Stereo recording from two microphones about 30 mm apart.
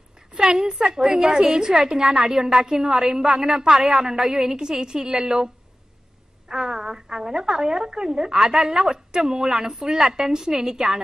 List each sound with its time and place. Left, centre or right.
0.3 s a woman's voice: right
6.5 s a woman's voice: right